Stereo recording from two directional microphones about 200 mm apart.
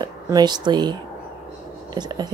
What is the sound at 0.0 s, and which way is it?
Speech, 20° right (ahead or behind).